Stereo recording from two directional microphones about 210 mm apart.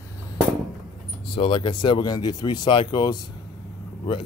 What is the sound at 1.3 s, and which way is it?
Speech, 25° left (ahead or behind).